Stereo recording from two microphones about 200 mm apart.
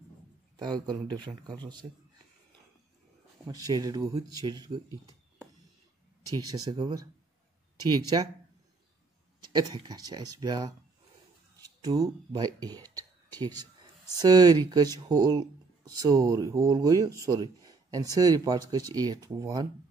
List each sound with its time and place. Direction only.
0.6 s a man's voice: 20° right (ahead or behind)
3.4 s speech: 20° right (ahead or behind)
6.3 s a man's voice: 20° right (ahead or behind)
9.4 s a man's voice: 20° right (ahead or behind)
12.8 s whispering: 20° right (ahead or behind)
14.1 s a man's voice: 20° right (ahead or behind)